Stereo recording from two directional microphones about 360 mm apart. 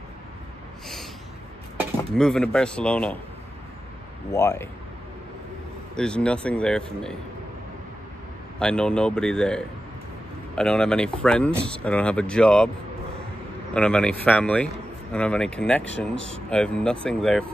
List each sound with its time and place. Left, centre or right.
1.8 s speech: centre
4.3 s a man's voice: centre
5.9 s speech: centre
8.5 s speech: centre
13.7 s speech: centre
16.2 s speech: right
16.4 s speech: centre